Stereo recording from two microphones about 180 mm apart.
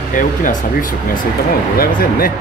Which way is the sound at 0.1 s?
45° left (ahead or behind).